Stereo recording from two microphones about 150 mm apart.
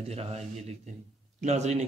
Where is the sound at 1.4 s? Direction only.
50° right (ahead or behind).